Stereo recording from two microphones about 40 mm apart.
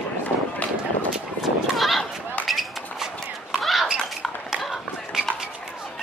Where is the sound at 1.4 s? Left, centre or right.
Centre.